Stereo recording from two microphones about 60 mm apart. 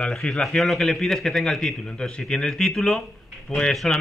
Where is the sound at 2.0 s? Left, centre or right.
Centre.